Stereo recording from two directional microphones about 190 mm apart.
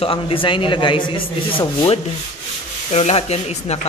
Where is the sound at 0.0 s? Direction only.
30° left (ahead or behind).